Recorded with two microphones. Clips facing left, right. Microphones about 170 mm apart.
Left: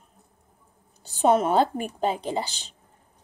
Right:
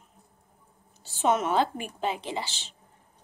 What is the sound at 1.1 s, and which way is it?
A woman's voice, 35° left (ahead or behind).